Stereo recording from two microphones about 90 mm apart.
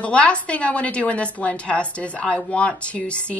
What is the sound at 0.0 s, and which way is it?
Speech, 15° left (ahead or behind).